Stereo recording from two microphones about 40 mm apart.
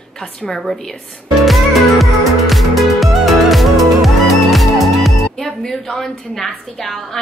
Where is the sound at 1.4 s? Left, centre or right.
Centre.